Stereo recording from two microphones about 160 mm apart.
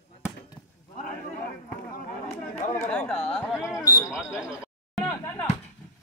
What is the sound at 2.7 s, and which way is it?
Chatter, 10° left (ahead or behind).